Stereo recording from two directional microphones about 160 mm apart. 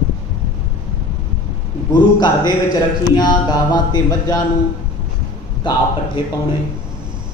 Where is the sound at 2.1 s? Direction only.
25° left (ahead or behind).